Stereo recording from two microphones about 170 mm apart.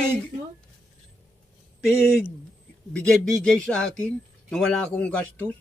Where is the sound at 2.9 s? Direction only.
5° left (ahead or behind).